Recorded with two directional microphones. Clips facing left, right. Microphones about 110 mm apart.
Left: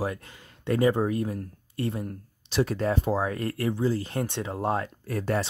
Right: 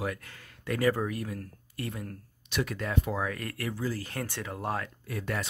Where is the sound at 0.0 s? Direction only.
25° left (ahead or behind).